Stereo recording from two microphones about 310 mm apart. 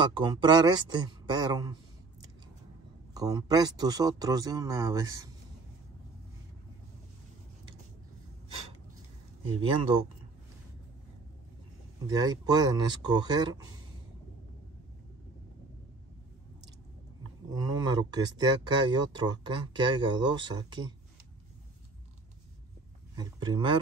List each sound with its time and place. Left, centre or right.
0.0 s speech: centre
3.2 s speech: centre
8.5 s a sound: centre
9.6 s speech: centre
12.1 s speech: centre
17.5 s speech: centre
23.1 s speech: centre